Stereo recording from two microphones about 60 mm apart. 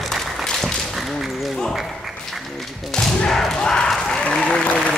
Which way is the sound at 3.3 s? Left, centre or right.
Centre.